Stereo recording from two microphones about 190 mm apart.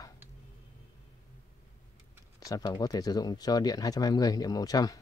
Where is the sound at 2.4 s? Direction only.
20° left (ahead or behind).